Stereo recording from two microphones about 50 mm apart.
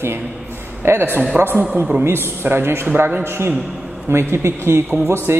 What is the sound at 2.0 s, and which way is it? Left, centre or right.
A woman's voice, right.